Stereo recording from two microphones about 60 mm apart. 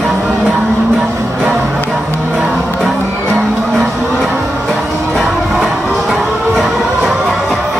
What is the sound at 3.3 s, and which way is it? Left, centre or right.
Music, centre.